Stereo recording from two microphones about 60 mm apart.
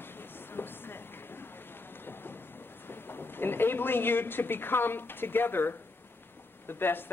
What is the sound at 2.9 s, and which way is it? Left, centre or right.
Speech, left.